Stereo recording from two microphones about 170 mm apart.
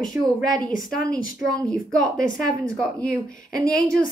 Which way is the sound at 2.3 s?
Centre (ahead or behind).